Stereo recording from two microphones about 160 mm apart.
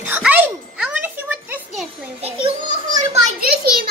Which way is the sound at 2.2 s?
35° right (ahead or behind).